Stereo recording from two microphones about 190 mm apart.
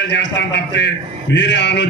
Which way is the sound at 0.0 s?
65° left (ahead or behind).